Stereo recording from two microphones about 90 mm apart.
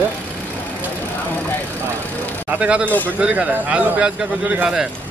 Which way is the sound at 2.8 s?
20° left (ahead or behind).